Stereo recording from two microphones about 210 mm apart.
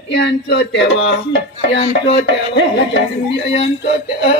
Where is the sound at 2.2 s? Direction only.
55° left (ahead or behind).